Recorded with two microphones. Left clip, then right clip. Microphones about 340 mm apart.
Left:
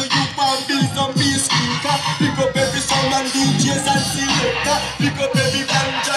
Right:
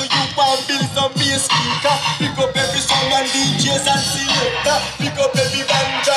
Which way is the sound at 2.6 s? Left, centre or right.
Right.